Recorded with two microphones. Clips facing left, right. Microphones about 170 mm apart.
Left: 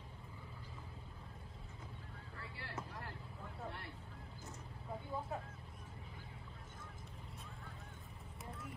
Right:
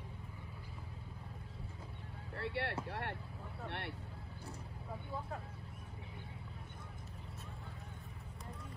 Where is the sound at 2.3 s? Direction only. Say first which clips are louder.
Right 10 dB; 75° right (ahead or behind).